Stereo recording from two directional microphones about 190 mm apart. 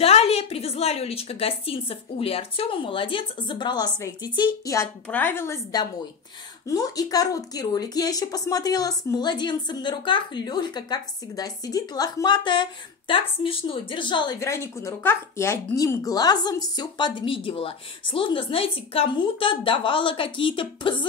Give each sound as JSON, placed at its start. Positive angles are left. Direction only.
{"t": 0.0, "sound": "speech", "side_deg": 30}
{"t": 14.4, "sound": "speech", "side_deg": 15}